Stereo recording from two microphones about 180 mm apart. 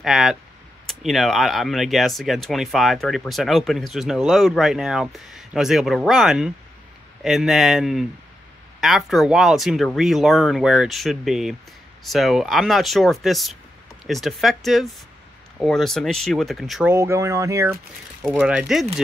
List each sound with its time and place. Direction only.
0.0 s speech: centre (ahead or behind)
16.9 s speech: 15° right (ahead or behind)
18.2 s speech: 5° right (ahead or behind)